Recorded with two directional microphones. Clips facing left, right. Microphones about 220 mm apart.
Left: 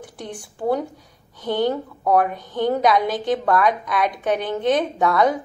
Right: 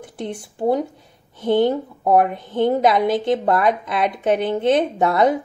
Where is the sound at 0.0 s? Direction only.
25° right (ahead or behind).